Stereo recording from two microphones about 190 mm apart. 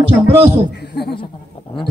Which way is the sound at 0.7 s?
60° left (ahead or behind).